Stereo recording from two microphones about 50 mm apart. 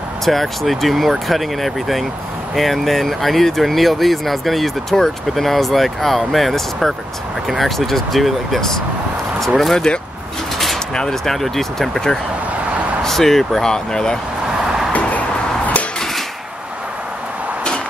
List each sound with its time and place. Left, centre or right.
0.2 s speech: centre
11.0 s speech: centre
14.9 s arrow: left